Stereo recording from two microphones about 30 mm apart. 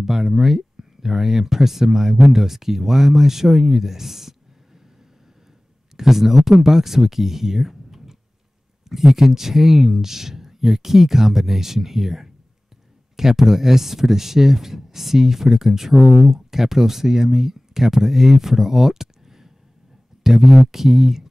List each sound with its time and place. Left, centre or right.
0.0 s speech: centre
5.9 s speech: centre